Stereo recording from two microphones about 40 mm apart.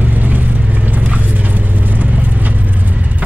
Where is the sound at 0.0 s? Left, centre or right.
Right.